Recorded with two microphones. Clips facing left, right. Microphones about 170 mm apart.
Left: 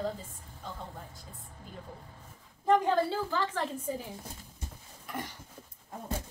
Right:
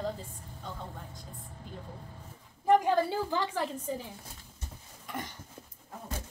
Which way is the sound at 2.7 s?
15° right (ahead or behind).